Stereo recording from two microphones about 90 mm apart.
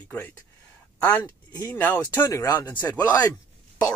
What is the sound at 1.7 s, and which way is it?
Speech, 20° left (ahead or behind).